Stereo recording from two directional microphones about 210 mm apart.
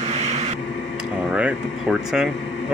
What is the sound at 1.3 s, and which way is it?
Speech, 5° right (ahead or behind).